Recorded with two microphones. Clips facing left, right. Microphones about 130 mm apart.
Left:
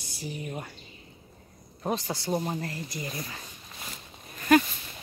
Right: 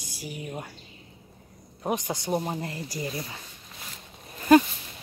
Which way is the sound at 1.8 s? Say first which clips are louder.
Right 1 dB; 15° right (ahead or behind).